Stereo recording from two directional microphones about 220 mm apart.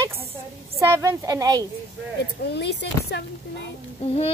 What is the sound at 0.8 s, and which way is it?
Speech, 10° right (ahead or behind).